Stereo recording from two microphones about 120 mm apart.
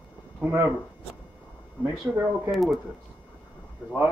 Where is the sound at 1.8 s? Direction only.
20° right (ahead or behind).